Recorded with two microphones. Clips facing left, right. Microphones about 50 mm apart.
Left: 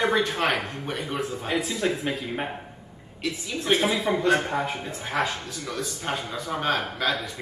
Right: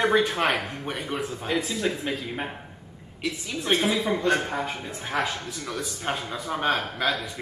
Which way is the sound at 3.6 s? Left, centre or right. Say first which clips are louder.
Left 1 dB; centre.